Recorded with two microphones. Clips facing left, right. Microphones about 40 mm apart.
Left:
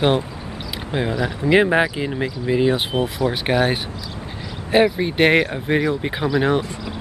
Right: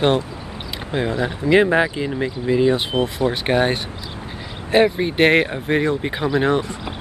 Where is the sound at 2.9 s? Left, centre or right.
Centre.